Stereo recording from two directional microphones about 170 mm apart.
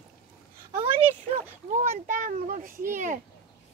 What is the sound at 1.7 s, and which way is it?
A child's voice, 45° right (ahead or behind).